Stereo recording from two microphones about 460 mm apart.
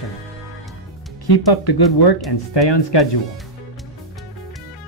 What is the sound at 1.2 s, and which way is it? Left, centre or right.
Speech, left.